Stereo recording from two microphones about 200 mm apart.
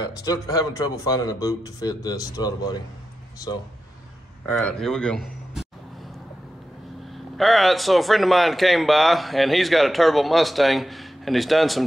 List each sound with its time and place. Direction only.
0.0 s speech: 20° left (ahead or behind)
4.5 s a man's voice: 5° left (ahead or behind)
7.3 s a man's voice: centre (ahead or behind)